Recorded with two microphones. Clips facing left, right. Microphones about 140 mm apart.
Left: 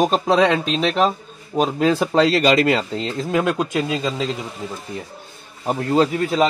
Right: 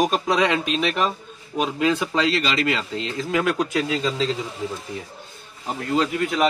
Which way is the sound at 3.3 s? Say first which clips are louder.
Left 2 dB; 20° left (ahead or behind).